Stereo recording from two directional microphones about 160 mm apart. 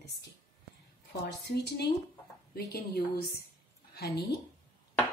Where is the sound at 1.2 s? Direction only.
90° left.